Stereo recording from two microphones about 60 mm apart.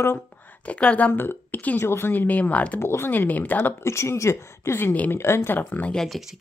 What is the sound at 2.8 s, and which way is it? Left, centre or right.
Speech, left.